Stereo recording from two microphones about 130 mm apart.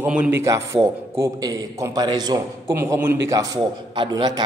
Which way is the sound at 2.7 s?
20° right (ahead or behind).